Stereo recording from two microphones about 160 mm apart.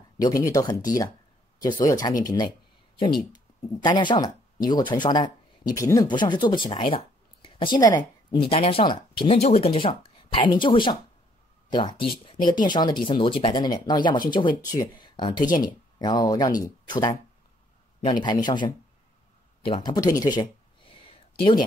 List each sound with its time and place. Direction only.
0.2 s speech: 20° left (ahead or behind)
3.8 s speech: 30° left (ahead or behind)
19.6 s a sound: 30° left (ahead or behind)